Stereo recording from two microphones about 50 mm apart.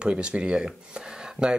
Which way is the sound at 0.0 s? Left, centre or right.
Centre.